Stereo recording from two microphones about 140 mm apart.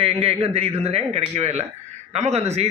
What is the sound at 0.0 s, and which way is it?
Speech, 45° right (ahead or behind).